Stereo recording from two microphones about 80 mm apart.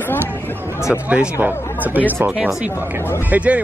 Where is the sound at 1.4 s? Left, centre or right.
Right.